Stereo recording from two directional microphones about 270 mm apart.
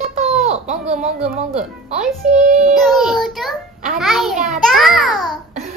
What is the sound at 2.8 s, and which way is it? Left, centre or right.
A child's voice, centre.